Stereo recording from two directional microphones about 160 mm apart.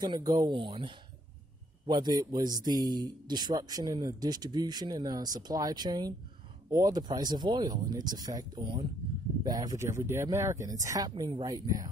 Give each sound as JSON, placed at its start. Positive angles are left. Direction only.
{"t": 0.0, "sound": "speech", "side_deg": -25}